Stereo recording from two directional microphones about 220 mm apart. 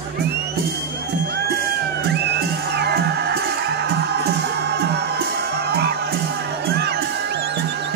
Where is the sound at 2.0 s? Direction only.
50° right (ahead or behind).